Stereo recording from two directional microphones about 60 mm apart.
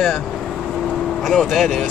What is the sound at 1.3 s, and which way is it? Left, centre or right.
Speech, centre.